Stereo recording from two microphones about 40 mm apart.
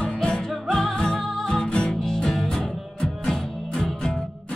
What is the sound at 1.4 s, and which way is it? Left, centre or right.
Music, left.